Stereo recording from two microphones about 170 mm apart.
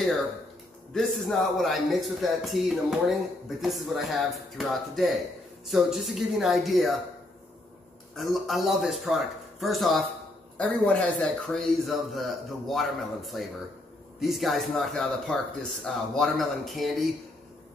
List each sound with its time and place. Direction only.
0.9 s a man's voice: centre (ahead or behind)
8.2 s a man's voice: centre (ahead or behind)